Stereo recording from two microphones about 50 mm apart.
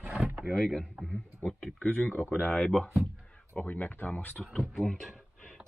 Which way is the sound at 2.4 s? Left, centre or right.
Left.